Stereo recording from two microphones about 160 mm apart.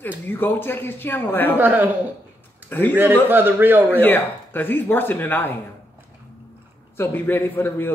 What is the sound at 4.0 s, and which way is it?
Speech, 10° left (ahead or behind).